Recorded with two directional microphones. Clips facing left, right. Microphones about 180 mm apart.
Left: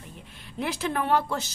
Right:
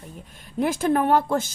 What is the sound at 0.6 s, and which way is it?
Speech, 50° right (ahead or behind).